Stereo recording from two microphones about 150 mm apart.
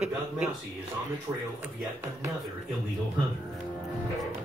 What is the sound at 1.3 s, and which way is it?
Speech, 20° right (ahead or behind).